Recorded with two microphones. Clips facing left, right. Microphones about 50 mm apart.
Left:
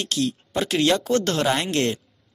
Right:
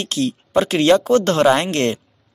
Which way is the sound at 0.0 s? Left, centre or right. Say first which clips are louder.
Right 3 dB; right.